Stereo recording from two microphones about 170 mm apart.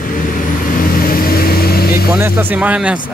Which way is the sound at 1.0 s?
60° left (ahead or behind).